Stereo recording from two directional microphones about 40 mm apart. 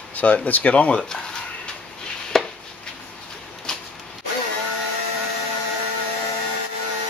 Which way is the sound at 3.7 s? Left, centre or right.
Centre.